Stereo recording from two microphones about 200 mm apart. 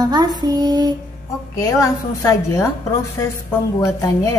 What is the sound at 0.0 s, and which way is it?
Child singing, 20° right (ahead or behind).